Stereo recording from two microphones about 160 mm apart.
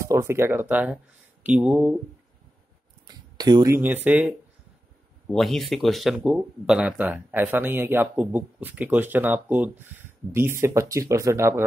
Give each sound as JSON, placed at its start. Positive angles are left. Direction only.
{"t": 0.0, "sound": "speech", "side_deg": -20}
{"t": 3.1, "sound": "a sound", "side_deg": -25}
{"t": 3.8, "sound": "speech", "side_deg": -10}
{"t": 5.3, "sound": "speech", "side_deg": 0}